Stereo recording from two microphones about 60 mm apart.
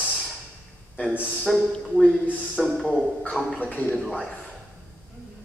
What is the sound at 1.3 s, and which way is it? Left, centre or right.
A man's voice, centre.